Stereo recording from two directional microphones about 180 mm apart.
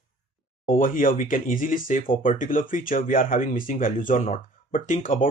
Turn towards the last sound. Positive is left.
turn(degrees=50)  # may be behind; listen again after turning